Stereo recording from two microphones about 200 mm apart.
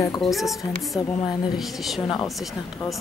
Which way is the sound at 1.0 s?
20° left (ahead or behind).